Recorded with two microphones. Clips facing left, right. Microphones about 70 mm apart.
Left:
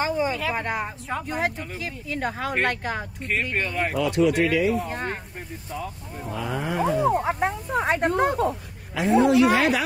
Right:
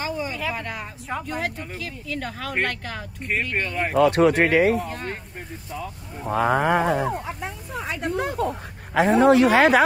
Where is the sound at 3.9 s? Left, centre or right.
Right.